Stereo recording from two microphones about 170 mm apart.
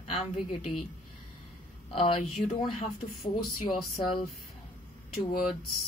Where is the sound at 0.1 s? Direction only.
35° left (ahead or behind).